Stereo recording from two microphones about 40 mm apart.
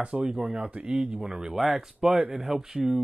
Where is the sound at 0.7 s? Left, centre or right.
Right.